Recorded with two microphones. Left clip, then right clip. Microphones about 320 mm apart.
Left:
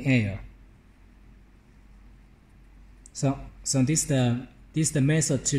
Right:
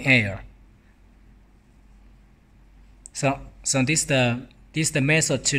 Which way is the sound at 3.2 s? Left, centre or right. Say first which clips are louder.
Right 5 dB; right.